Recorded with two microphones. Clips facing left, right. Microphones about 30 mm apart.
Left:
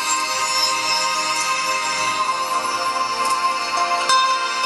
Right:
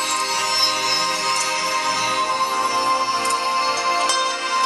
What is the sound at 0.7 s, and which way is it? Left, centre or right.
Music, centre.